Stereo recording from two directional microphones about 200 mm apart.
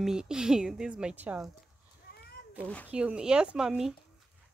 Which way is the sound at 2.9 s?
5° right (ahead or behind).